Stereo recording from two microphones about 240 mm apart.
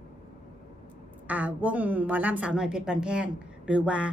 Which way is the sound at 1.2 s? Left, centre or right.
Centre.